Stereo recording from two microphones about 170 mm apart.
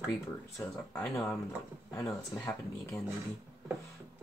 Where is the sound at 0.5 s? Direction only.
5° left (ahead or behind).